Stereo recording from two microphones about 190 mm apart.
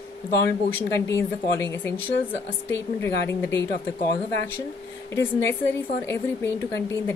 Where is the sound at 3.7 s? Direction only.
50° left (ahead or behind).